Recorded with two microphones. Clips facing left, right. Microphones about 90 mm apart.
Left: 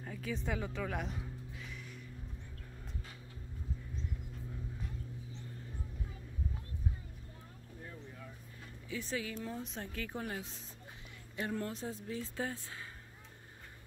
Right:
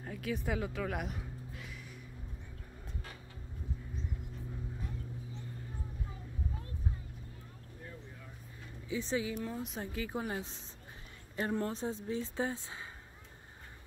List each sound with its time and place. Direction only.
0.0 s speech: 5° right (ahead or behind)
1.6 s a sound: 5° right (ahead or behind)
8.8 s speech: 20° right (ahead or behind)
9.4 s speech: 5° right (ahead or behind)
11.3 s speech: 35° right (ahead or behind)